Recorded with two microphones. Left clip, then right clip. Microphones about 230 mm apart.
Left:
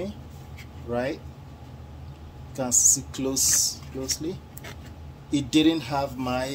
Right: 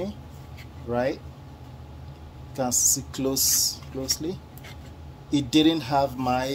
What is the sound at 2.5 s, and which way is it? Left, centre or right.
Speech, right.